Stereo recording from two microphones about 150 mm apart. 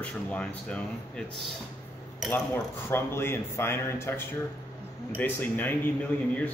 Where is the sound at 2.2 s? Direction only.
10° left (ahead or behind).